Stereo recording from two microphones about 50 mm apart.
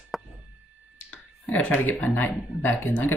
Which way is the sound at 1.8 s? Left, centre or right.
Left.